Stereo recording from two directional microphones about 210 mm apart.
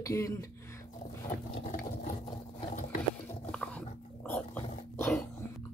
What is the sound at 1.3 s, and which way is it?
Ratchet, 35° left (ahead or behind).